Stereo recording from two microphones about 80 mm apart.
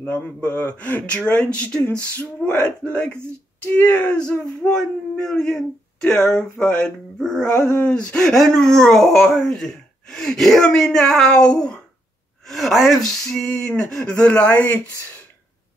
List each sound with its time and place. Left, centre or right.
0.0 s speech: left